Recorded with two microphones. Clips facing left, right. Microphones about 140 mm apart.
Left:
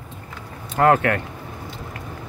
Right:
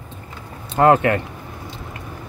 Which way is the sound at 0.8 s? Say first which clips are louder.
Right 3 dB; 20° right (ahead or behind).